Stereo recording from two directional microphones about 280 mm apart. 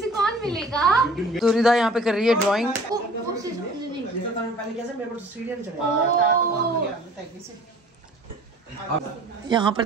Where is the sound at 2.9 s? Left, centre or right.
Centre.